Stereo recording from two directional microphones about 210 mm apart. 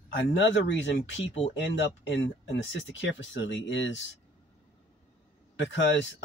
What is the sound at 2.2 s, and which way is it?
Speech, 60° left (ahead or behind).